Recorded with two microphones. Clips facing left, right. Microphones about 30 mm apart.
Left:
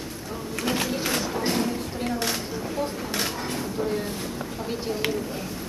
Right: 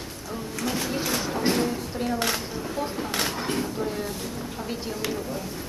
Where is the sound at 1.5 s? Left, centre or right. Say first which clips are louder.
Even; centre.